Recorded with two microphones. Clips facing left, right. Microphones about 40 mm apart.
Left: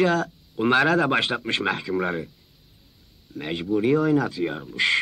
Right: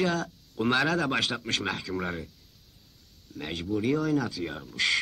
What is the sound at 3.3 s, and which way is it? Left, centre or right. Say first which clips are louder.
Speech: left 6 dB; centre.